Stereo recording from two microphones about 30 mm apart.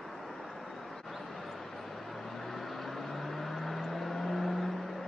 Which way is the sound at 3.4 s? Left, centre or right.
Centre.